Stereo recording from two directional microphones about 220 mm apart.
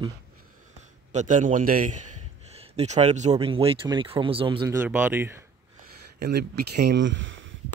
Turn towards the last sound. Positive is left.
turn(degrees=-60)  # may be behind; listen again after turning